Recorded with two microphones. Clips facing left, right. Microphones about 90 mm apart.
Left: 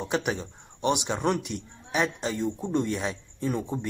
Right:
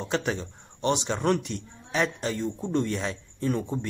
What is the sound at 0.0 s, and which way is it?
Speech, 15° left (ahead or behind).